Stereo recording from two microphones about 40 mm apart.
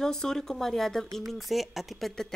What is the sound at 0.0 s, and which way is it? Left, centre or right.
Speech, centre.